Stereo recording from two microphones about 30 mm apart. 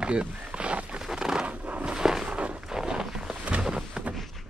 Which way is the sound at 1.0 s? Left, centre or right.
Centre.